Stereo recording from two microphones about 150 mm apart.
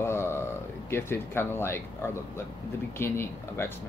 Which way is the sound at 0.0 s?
15° left (ahead or behind).